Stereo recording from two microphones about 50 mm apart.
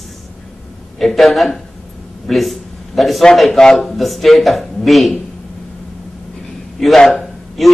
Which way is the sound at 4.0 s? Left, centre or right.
Centre.